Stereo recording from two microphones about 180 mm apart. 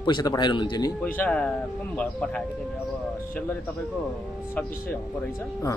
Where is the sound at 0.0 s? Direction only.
20° left (ahead or behind).